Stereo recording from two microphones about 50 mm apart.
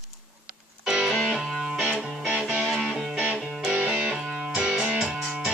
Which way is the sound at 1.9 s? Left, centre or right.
Right.